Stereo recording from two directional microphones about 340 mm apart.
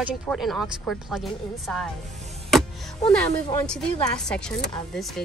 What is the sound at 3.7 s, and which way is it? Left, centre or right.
Speech, centre.